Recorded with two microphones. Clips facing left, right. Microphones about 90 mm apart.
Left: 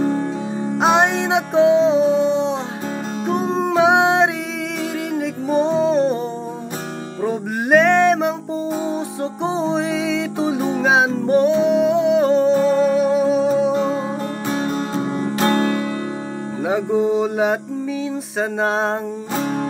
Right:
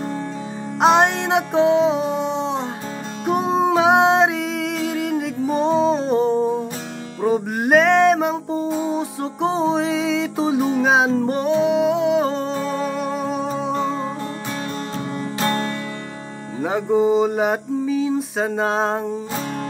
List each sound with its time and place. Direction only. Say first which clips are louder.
0.7 s music: right 1 dB; centre (ahead or behind)
14.6 s music: left 5 dB; 25° left (ahead or behind)
16.6 s mantra: right 1 dB; centre (ahead or behind)